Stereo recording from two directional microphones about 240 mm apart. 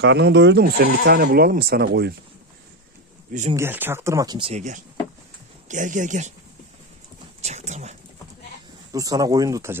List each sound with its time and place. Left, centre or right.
0.0 s speech: right
3.5 s speech: centre; by 6.3 s right
7.4 s a sound: right
8.9 s speech: centre